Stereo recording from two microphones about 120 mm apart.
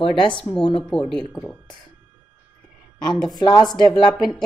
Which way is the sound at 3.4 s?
35° left (ahead or behind).